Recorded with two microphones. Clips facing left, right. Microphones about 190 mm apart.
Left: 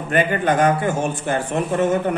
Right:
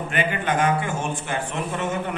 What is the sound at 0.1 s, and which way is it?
A man's voice, 40° left (ahead or behind).